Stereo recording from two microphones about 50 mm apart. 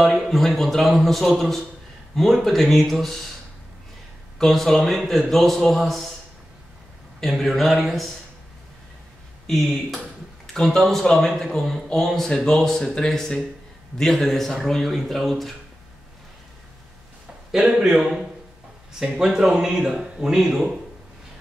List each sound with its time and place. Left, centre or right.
0.0 s a man's voice: centre
4.4 s a man's voice: centre
7.2 s a man's voice: centre
9.5 s a man's voice: centre
10.4 s a sound: centre
10.8 s a man's voice: centre
17.6 s a man's voice: centre